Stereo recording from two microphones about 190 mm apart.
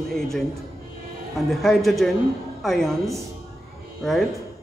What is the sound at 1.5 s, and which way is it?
A man's voice, centre (ahead or behind).